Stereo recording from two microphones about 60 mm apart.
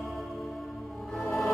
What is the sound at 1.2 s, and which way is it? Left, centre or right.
Music, centre.